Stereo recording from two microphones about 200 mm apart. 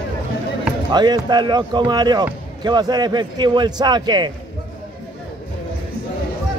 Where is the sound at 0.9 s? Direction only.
20° right (ahead or behind).